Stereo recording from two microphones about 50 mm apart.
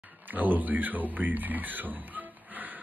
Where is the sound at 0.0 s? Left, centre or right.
Right.